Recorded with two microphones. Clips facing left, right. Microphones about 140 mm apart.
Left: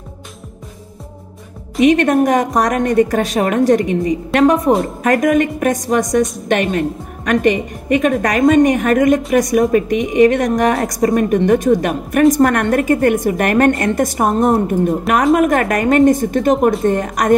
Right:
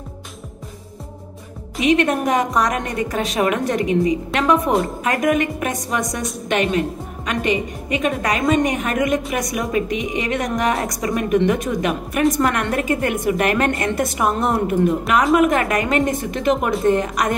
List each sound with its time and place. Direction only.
1.9 s a woman's voice: 45° left (ahead or behind)